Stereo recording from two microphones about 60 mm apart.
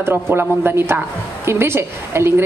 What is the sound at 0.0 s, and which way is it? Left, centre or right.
A woman's voice, right.